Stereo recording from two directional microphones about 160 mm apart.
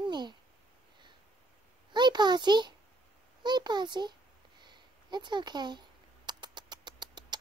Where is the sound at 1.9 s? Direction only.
30° right (ahead or behind).